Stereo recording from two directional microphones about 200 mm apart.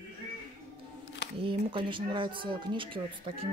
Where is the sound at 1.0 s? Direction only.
60° left (ahead or behind).